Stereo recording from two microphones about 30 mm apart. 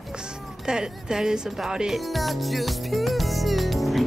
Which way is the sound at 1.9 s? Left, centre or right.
Centre.